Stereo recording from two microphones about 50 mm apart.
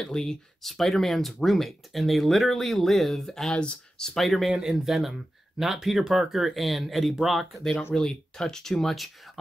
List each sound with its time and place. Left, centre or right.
0.0 s speech: centre
3.5 s speech: centre
4.1 s speech: centre
4.5 s speech: centre
4.8 s speech: centre